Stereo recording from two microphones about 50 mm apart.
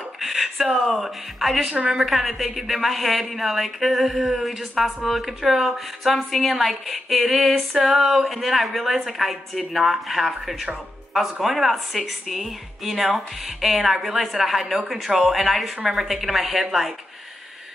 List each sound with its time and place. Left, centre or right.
0.2 s speech: centre
2.0 s a woman's voice: centre